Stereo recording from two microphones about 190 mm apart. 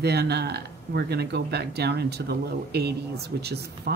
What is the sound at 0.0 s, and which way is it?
Speech, 60° right (ahead or behind).